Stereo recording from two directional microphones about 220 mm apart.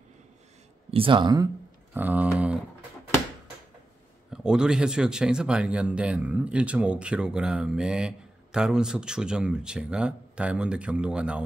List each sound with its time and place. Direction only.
0.9 s speech: 20° right (ahead or behind)
2.0 s speech: 5° right (ahead or behind)
4.3 s speech: 5° right (ahead or behind)